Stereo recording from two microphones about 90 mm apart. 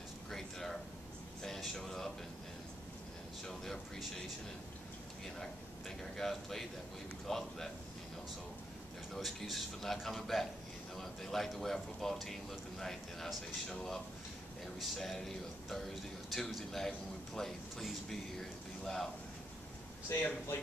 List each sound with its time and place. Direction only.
0.3 s a sound: 5° left (ahead or behind)
3.4 s a man's voice: 5° left (ahead or behind)
5.4 s a man's voice: 5° left (ahead or behind)
9.1 s a man's voice: centre (ahead or behind)
20.1 s speech: 25° left (ahead or behind)